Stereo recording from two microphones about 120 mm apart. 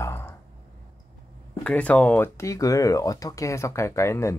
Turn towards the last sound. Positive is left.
turn(degrees=25)  # may be behind; listen again after turning